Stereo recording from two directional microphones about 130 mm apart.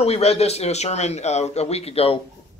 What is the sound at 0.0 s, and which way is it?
Speech, 50° left (ahead or behind).